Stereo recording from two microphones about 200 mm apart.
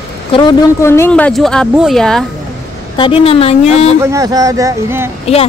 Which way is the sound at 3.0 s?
25° left (ahead or behind).